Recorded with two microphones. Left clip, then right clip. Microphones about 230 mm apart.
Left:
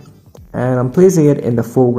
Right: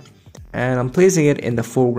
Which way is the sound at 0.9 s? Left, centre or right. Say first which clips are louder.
Left 4 dB; right.